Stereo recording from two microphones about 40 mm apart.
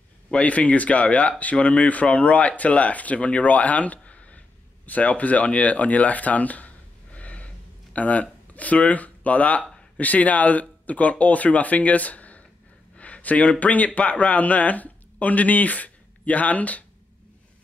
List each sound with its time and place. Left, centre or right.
0.3 s speech: left
12.9 s a sound: left
13.6 s speech: left